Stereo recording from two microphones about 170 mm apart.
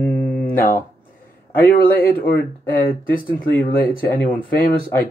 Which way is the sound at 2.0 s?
10° left (ahead or behind).